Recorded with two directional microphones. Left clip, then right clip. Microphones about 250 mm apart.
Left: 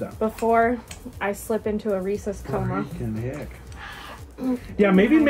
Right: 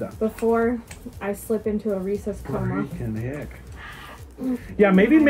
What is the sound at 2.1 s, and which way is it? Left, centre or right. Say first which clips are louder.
Speech: even; centre.